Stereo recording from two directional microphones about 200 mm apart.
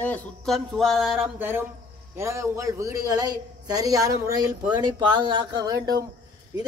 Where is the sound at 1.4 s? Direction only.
10° right (ahead or behind).